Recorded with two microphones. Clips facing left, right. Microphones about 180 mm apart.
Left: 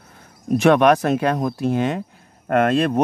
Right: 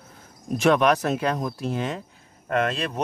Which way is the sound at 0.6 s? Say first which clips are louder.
Left 5 dB; 60° left (ahead or behind).